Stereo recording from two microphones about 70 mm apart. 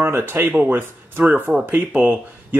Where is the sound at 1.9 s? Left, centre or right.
Centre.